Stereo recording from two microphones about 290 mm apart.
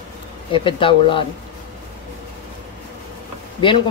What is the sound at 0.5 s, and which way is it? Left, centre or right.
Speech, centre.